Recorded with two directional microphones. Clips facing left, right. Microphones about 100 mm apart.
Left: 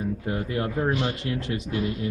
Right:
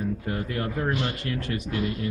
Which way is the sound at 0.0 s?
10° left (ahead or behind).